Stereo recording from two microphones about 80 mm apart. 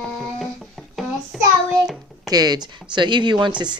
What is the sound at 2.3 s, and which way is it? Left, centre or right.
Speech, right.